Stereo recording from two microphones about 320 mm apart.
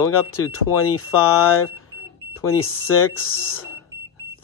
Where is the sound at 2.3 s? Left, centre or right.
Left.